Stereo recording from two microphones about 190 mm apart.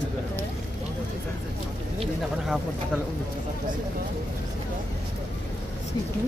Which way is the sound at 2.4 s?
Centre (ahead or behind).